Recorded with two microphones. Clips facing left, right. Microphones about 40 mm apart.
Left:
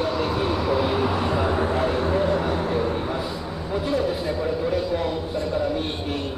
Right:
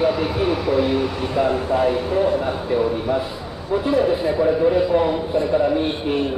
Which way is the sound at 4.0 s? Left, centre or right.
Right.